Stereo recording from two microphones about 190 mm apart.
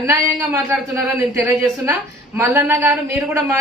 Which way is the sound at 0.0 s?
15° right (ahead or behind).